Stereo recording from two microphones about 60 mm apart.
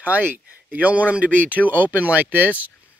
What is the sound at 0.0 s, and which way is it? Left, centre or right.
Speech, right.